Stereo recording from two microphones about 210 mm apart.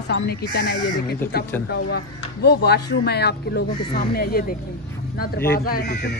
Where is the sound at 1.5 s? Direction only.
10° left (ahead or behind).